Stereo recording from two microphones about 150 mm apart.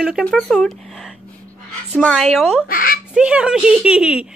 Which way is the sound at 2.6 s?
70° left (ahead or behind).